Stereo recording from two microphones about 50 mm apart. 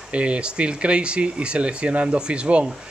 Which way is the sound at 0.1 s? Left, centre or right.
Right.